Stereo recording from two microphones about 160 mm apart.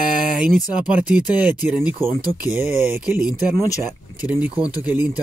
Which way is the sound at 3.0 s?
5° right (ahead or behind).